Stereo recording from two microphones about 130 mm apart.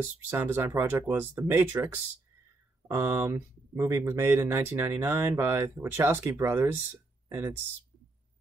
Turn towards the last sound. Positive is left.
turn(degrees=-20)  # may be behind; listen again after turning